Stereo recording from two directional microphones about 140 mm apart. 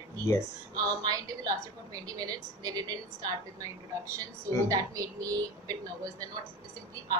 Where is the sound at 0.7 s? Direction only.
25° right (ahead or behind).